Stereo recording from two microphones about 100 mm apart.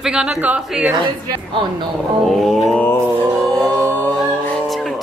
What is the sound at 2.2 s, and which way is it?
Speech, centre (ahead or behind).